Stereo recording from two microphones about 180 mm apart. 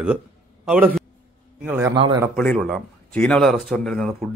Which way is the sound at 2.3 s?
5° left (ahead or behind).